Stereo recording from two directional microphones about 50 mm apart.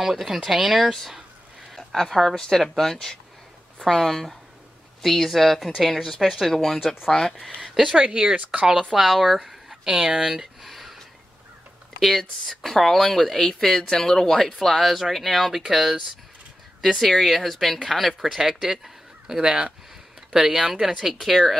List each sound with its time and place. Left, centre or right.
0.0 s speech: centre
7.6 s a sound: centre
8.0 s speech: centre
9.0 s speech: centre
9.9 s speech: centre
12.0 s speech: centre
21.0 s speech: centre